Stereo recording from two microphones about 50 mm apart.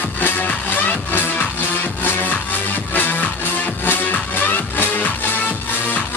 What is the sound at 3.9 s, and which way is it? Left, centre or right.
Music, left.